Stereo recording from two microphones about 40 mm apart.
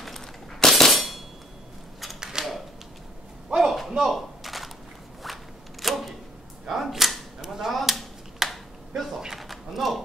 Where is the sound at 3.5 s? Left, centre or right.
Right.